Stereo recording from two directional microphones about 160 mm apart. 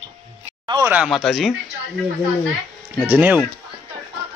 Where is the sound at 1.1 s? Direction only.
Centre (ahead or behind).